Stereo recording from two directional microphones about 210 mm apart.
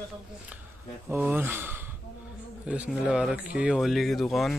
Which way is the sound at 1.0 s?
10° right (ahead or behind).